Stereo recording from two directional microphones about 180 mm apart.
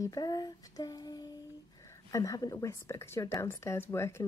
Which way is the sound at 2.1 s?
20° left (ahead or behind).